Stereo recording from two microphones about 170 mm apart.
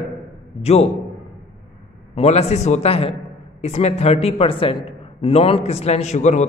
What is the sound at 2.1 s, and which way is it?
A man's voice, 40° left (ahead or behind).